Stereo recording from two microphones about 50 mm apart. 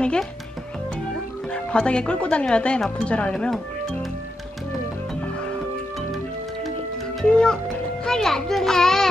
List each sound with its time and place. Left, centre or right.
1.5 s speech: left
7.2 s a child's voice: centre